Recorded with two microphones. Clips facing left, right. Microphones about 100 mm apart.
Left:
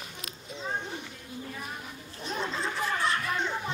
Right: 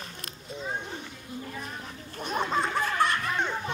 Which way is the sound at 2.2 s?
55° right (ahead or behind).